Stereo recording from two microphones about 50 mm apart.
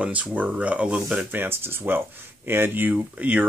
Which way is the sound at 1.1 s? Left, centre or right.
Right.